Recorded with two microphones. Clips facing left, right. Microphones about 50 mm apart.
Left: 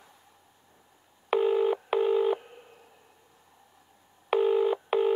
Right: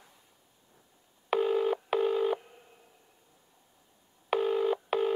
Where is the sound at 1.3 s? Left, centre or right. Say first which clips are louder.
Left 3 dB; centre.